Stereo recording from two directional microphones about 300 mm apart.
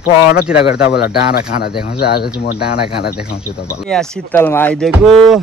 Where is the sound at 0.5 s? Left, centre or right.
Left.